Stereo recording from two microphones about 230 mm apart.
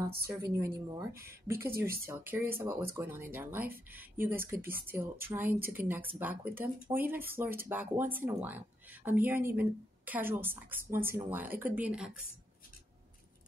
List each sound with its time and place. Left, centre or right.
0.1 s a woman's voice: right
0.9 s speech: centre